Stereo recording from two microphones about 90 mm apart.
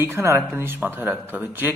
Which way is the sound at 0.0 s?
30° right (ahead or behind).